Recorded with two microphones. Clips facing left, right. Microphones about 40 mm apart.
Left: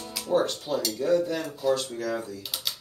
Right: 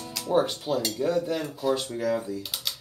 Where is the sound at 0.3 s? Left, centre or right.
Centre.